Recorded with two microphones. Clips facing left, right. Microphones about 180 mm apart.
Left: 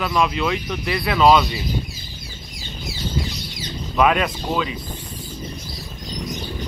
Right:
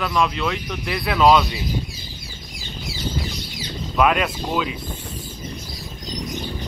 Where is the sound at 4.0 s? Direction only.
Centre (ahead or behind).